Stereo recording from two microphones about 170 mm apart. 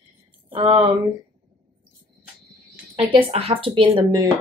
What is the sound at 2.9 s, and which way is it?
Speech, 35° right (ahead or behind).